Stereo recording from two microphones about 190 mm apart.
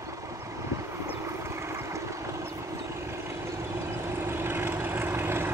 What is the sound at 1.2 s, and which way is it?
Boat, 15° right (ahead or behind).